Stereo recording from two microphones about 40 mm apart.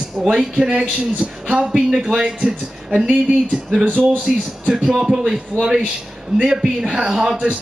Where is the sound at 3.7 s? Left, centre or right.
Right.